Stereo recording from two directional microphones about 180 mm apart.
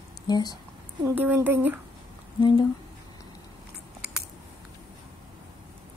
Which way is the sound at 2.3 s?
25° left (ahead or behind).